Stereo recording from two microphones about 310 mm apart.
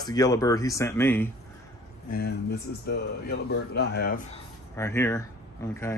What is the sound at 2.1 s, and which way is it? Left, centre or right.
Speech, left.